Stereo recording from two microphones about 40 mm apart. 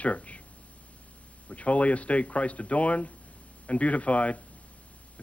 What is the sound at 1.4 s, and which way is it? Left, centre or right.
Speech, left.